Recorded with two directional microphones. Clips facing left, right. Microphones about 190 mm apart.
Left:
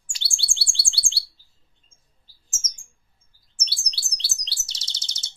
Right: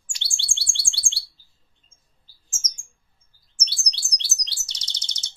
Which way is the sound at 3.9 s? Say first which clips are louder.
Right 1 dB; 30° left (ahead or behind).